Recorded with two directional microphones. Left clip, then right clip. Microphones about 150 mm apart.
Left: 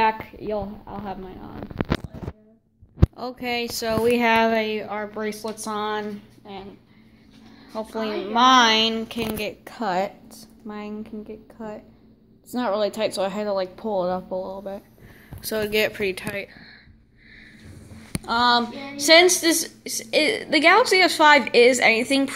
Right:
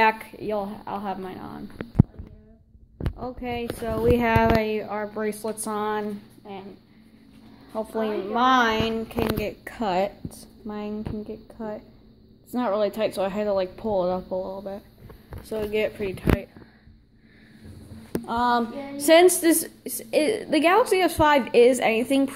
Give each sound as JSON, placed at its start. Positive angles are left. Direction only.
{"t": 0.0, "sound": "speech", "side_deg": -10}
{"t": 3.2, "sound": "speech", "side_deg": 0}
{"t": 7.7, "sound": "a woman's voice", "side_deg": -10}
{"t": 8.3, "sound": "speech", "side_deg": 10}
{"t": 9.4, "sound": "a woman's voice", "side_deg": -10}
{"t": 12.4, "sound": "speech", "side_deg": -5}
{"t": 18.2, "sound": "a sound", "side_deg": -10}
{"t": 18.9, "sound": "a woman's voice", "side_deg": -35}